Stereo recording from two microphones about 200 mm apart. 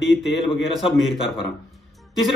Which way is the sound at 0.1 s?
Centre (ahead or behind).